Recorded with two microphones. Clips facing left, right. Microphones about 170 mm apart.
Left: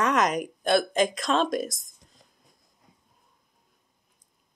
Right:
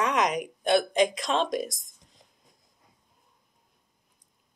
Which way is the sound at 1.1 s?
15° right (ahead or behind).